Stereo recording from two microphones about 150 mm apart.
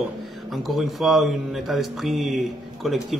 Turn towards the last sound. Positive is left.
turn(degrees=0)  # may be behind; listen again after turning